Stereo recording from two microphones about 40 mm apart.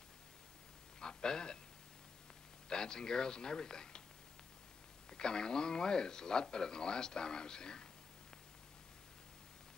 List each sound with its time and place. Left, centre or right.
1.0 s a sound: centre
2.7 s speech: centre
5.1 s speech: centre